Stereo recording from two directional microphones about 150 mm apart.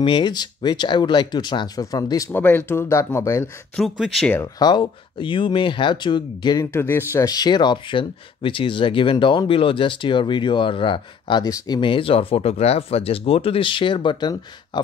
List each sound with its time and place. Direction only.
0.0 s speech: 30° left (ahead or behind)
4.0 s speech: centre (ahead or behind)
4.6 s speech: 30° left (ahead or behind)
6.7 s speech: 15° left (ahead or behind)